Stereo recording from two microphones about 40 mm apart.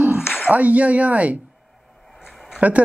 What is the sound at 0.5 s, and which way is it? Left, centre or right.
Speech, right.